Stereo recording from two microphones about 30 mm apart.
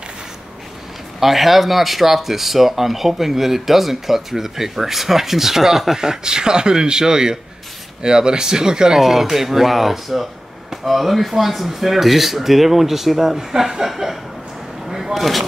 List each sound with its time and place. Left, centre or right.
1.2 s speech: centre; by 9.0 s right
9.0 s speech: centre
14.9 s a sound: centre
15.1 s speech: centre